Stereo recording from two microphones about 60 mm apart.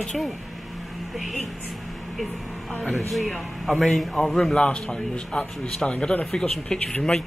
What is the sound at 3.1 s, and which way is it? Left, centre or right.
Speech, centre.